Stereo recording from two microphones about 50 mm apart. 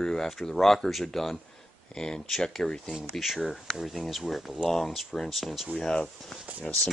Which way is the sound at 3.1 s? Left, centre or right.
Centre.